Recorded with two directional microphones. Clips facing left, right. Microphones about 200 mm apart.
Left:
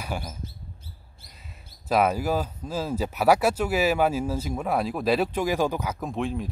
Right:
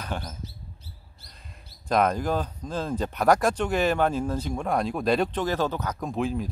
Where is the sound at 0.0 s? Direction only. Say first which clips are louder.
Left 1 dB; 10° left (ahead or behind).